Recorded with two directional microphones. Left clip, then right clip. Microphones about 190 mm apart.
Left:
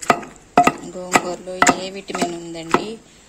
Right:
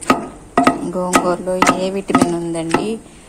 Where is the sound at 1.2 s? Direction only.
10° right (ahead or behind).